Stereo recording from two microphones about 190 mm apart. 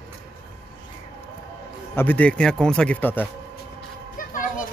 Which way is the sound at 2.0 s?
10° left (ahead or behind).